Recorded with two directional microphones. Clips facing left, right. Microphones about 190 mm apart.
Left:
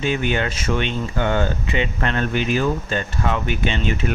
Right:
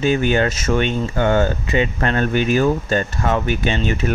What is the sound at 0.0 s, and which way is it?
Speech, 40° right (ahead or behind).